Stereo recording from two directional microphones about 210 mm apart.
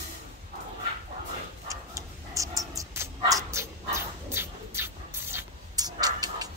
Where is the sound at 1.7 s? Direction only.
15° right (ahead or behind).